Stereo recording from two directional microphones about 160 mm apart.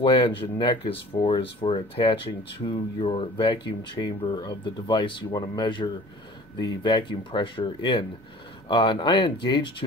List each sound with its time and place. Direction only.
0.0 s speech: 30° left (ahead or behind)